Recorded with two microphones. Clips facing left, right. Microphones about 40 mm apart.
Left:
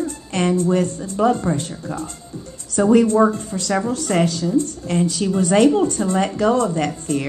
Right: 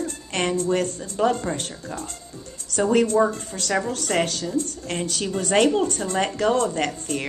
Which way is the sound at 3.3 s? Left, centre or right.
Right.